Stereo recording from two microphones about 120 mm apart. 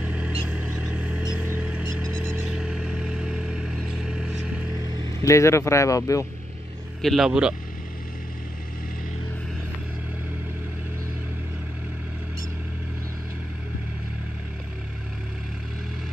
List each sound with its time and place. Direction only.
0.0 s vehicle: 10° right (ahead or behind)
2.4 s vehicle: 5° right (ahead or behind)
5.2 s speech: 25° left (ahead or behind)
7.0 s speech: centre (ahead or behind)